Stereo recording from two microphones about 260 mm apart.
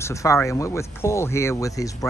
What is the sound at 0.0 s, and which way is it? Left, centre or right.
Speech, centre.